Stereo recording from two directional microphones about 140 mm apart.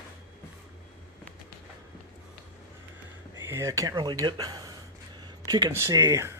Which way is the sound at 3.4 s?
20° right (ahead or behind).